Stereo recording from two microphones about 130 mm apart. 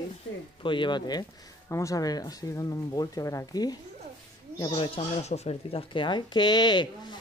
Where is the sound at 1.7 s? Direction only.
25° left (ahead or behind).